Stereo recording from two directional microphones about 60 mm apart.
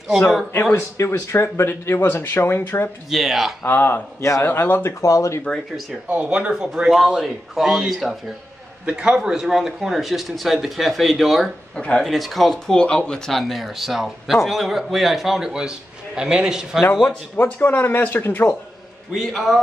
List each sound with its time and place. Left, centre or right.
0.7 s speech: left
1.1 s speech: left
3.1 s speech: centre
3.6 s speech: left
4.4 s speech: left
5.0 s speech: left
6.0 s speech: centre
6.5 s speech: centre
11.4 s speech: centre
12.0 s speech: centre
12.8 s speech: centre
13.3 s a man's voice: centre
17.4 s speech: left
19.3 s speech: centre